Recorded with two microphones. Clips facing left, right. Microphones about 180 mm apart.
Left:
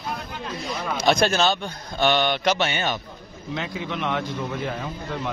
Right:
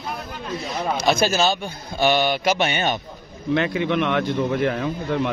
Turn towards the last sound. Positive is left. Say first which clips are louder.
# right 7 dB
turn(degrees=-60)  # may be behind; listen again after turning